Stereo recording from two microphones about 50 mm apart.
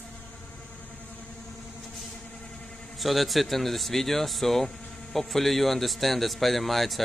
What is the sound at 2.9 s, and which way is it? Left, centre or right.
Speech, centre.